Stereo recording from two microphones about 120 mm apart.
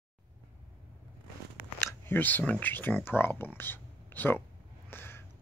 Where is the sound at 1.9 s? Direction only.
15° left (ahead or behind).